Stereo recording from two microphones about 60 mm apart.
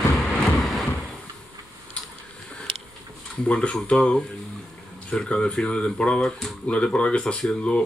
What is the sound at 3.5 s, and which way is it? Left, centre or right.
Speech, centre.